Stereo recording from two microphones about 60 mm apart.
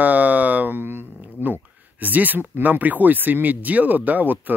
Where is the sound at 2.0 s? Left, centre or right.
Right.